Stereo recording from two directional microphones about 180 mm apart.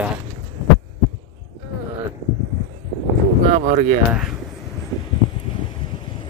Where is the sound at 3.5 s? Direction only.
50° right (ahead or behind).